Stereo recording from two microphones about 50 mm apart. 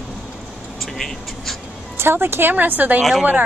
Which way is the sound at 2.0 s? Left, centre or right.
Right.